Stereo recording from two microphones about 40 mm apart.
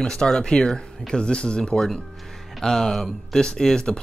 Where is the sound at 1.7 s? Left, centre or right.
Centre.